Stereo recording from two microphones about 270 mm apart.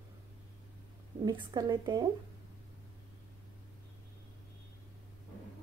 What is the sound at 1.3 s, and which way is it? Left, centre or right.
Speech, centre.